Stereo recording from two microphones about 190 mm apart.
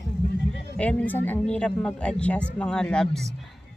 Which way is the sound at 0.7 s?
10° left (ahead or behind).